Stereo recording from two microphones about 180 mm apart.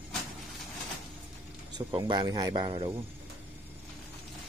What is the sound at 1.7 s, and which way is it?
Speech, 25° right (ahead or behind).